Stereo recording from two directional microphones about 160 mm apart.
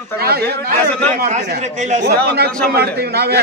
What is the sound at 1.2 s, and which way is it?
Speech, 50° right (ahead or behind).